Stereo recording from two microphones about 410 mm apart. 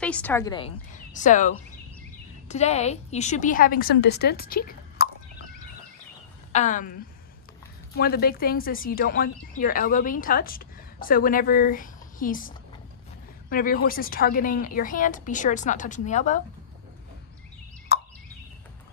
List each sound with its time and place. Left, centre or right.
0.0 s a woman's voice: centre; by 5.1 s left
6.5 s speech: centre
17.9 s a sound: left